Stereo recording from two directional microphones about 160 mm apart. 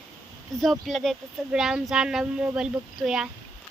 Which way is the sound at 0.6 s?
Centre (ahead or behind).